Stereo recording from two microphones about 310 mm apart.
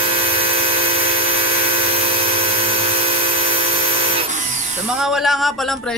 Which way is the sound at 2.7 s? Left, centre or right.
Centre.